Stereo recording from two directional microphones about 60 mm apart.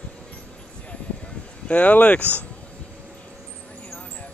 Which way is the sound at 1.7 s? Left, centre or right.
Left.